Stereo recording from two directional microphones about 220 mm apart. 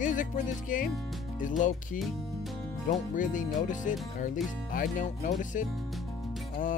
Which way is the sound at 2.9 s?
35° left (ahead or behind).